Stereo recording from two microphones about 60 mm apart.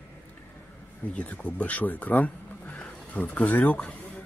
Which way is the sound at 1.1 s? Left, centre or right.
Left.